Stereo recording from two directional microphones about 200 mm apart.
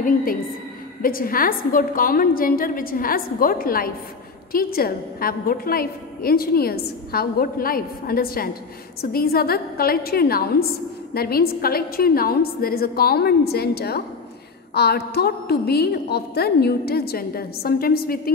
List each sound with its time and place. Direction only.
0.0 s a woman's voice: 45° left (ahead or behind)